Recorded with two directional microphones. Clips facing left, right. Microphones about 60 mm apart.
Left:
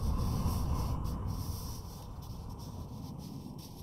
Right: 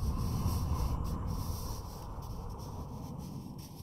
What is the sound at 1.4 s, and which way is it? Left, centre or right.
Writing, right.